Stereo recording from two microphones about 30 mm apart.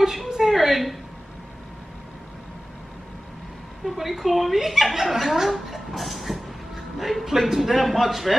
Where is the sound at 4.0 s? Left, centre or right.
Centre.